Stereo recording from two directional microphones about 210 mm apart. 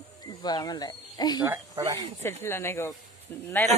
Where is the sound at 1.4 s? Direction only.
15° right (ahead or behind).